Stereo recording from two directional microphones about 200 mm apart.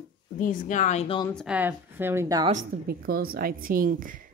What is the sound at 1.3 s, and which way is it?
A woman's voice, 5° right (ahead or behind).